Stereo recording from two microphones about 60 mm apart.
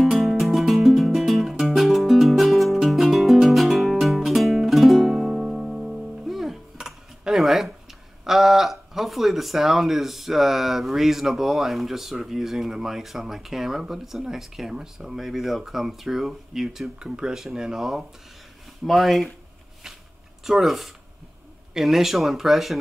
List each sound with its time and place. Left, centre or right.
0.0 s music: centre
8.2 s speech: centre
20.4 s speech: centre